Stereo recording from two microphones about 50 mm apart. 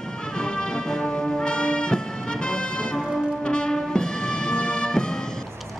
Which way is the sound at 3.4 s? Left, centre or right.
Centre.